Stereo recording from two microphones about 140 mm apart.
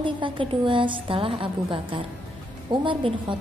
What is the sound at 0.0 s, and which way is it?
A woman's voice, 35° right (ahead or behind).